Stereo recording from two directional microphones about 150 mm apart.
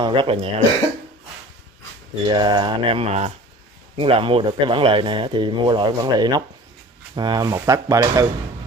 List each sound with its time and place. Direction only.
0.0 s speech: 35° right (ahead or behind)
2.2 s speech: 30° right (ahead or behind); by 3.3 s 50° right (ahead or behind)
3.9 s speech: 35° right (ahead or behind)